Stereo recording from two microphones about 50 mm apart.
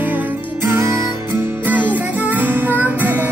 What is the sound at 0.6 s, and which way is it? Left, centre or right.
Music, right.